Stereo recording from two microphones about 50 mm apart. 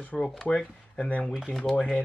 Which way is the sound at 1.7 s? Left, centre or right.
Left.